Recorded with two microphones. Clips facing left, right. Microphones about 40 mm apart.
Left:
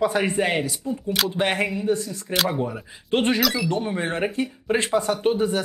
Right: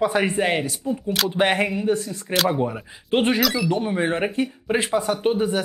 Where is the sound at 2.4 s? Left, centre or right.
Centre.